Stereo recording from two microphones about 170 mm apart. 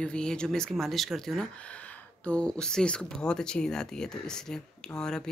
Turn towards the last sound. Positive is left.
turn(degrees=5)  # may be behind; listen again after turning